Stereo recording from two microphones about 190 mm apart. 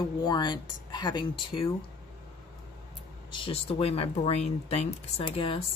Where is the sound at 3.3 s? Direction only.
30° left (ahead or behind).